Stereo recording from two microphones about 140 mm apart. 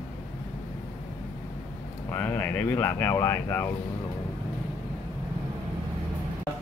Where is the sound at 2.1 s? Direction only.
15° left (ahead or behind).